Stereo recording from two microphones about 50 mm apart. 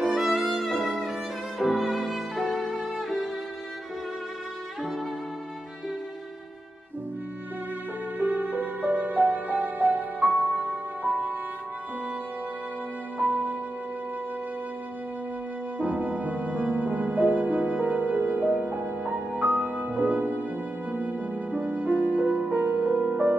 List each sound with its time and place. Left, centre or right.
0.0 s violin: centre
8.2 s music: right
13.2 s music: right
15.8 s music: right